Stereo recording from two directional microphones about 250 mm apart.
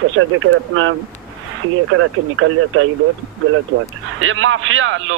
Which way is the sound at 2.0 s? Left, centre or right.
Right.